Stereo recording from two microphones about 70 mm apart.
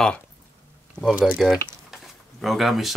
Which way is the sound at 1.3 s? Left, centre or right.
Centre.